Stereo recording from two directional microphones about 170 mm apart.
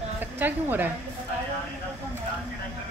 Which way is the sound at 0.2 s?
10° right (ahead or behind).